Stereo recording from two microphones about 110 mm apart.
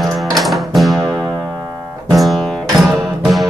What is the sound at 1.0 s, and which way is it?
Music, 35° right (ahead or behind).